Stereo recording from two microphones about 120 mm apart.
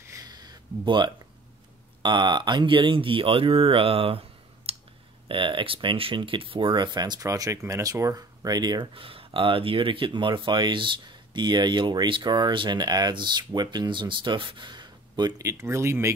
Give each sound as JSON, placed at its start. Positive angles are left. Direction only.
{"t": 0.0, "sound": "a sound", "side_deg": -30}
{"t": 2.0, "sound": "speech", "side_deg": -40}
{"t": 4.7, "sound": "clicking", "side_deg": -55}
{"t": 5.3, "sound": "speech", "side_deg": -45}
{"t": 8.9, "sound": "speech", "side_deg": -50}